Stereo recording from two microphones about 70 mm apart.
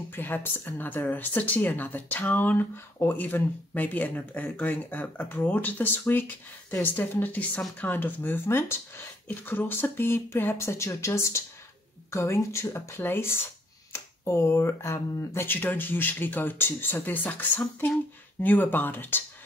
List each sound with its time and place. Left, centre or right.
0.1 s speech: left